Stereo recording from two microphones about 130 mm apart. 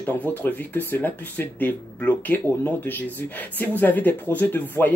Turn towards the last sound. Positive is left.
turn(degrees=15)  # may be behind; listen again after turning